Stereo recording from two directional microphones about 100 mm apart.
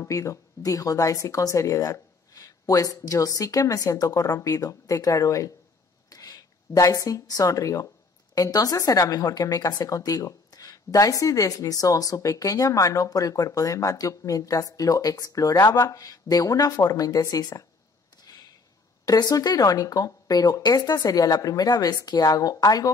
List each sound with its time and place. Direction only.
0.0 s a woman's voice: 35° left (ahead or behind)
18.2 s a sound: 40° left (ahead or behind)
19.0 s a woman's voice: 40° left (ahead or behind)